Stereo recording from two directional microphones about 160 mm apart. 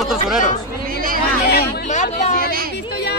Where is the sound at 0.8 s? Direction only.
60° right (ahead or behind).